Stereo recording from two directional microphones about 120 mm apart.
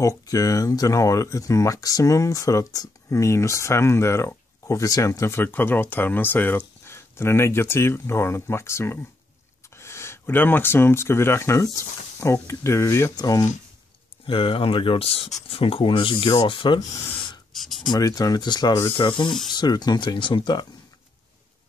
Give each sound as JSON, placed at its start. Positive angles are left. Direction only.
{"t": 0.0, "sound": "speech", "side_deg": 30}
{"t": 14.2, "sound": "speech", "side_deg": 50}
{"t": 17.5, "sound": "writing", "side_deg": 0}
{"t": 17.8, "sound": "speech", "side_deg": 30}